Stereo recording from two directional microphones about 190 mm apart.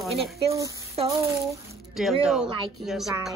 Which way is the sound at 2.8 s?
Centre (ahead or behind).